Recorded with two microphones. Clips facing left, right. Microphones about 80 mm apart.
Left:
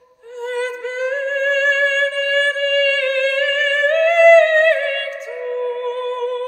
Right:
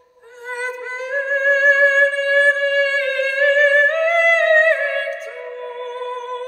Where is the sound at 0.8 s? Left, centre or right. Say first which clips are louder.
Left 2 dB; centre.